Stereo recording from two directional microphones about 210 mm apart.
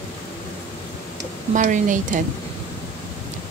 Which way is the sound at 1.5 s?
35° right (ahead or behind).